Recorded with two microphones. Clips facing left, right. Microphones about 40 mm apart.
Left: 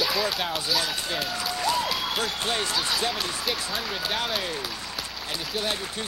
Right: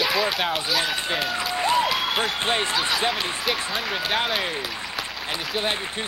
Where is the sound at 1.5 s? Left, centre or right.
Right.